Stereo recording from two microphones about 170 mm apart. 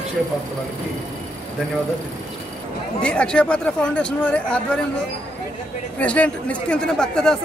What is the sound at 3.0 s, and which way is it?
Speech, 5° left (ahead or behind).